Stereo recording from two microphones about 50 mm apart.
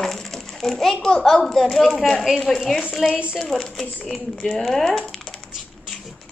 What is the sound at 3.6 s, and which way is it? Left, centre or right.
A child's voice, centre.